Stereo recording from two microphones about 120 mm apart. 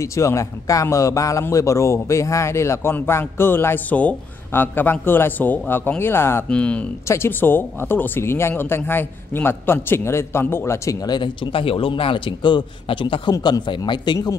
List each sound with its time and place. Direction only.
0.0 s speech: 25° left (ahead or behind)
11.1 s a man's voice: 45° left (ahead or behind)